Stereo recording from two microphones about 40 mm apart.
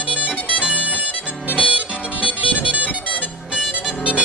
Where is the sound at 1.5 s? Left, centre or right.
Right.